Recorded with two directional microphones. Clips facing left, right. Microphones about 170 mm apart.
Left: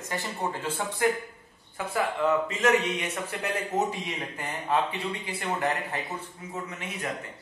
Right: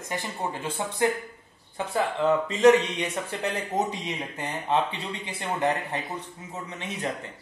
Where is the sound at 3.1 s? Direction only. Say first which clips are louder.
Right 2 dB; 30° right (ahead or behind).